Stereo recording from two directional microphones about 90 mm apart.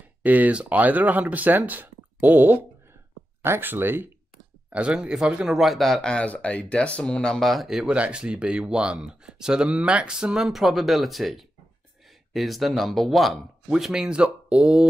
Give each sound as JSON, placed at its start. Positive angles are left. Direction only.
{"t": 0.2, "sound": "speech", "side_deg": -20}
{"t": 4.6, "sound": "speech", "side_deg": -15}